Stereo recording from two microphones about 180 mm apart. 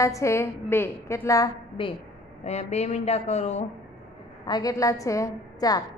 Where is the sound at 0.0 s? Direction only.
15° left (ahead or behind).